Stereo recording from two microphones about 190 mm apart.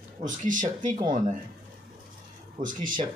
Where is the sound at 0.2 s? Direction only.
40° right (ahead or behind).